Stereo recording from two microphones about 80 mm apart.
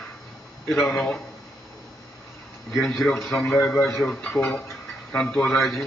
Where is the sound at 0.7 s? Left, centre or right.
Centre.